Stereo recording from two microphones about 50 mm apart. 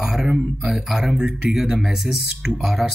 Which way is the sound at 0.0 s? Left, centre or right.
Centre.